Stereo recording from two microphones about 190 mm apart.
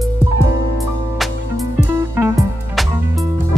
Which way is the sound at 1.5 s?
15° right (ahead or behind).